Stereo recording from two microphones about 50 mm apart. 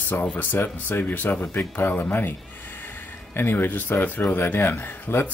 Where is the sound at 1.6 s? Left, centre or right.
Left.